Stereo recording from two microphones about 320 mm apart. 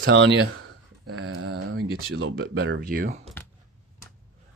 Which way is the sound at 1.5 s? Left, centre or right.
Right.